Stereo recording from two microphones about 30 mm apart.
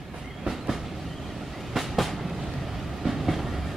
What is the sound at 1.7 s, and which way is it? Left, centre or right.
Train, centre.